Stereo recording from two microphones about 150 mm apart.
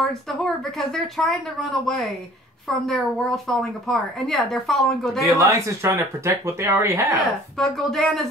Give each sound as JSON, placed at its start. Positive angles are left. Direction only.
{"t": 0.0, "sound": "a woman's voice", "side_deg": 0}
{"t": 5.3, "sound": "speech", "side_deg": -20}
{"t": 7.2, "sound": "a woman's voice", "side_deg": 0}